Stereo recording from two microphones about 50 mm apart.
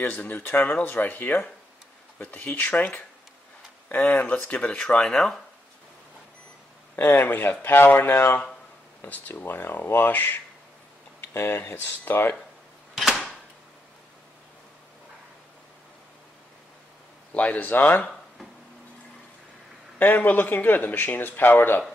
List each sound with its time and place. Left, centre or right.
0.3 s speech: left
2.5 s speech: left
3.9 s speech: left
5.0 s speech: centre
7.0 s speech: left
8.1 s speech: left
11.1 s speech: left
12.9 s a sound: centre
17.3 s speech: left
20.0 s speech: left